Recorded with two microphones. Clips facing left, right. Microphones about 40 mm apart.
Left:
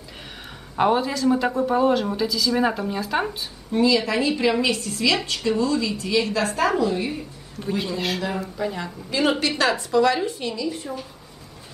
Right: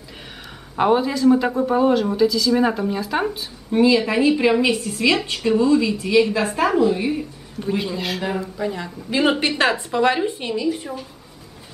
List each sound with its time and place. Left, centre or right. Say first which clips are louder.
0.7 s speech: right 2 dB; centre
3.7 s a woman's voice: right 3 dB; right; by 8.9 s centre
9.6 s a woman's voice: right 1 dB; right